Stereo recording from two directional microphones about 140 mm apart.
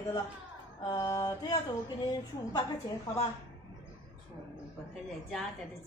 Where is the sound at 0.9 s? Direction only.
25° left (ahead or behind).